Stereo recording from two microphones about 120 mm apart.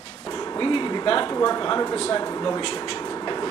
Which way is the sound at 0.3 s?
30° left (ahead or behind).